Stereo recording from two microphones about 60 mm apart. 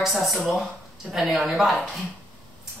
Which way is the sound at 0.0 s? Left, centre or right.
Centre.